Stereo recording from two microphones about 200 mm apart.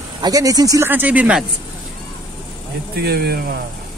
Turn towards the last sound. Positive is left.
turn(degrees=-50)  # may be behind; listen again after turning